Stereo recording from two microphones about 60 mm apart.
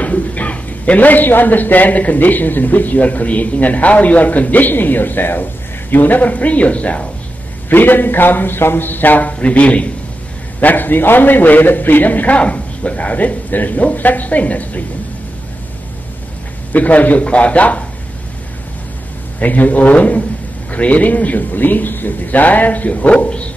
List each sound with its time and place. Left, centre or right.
0.0 s a man's voice: left
7.7 s a man's voice: left
10.6 s a man's voice: left
16.7 s a man's voice: left
19.4 s a man's voice: left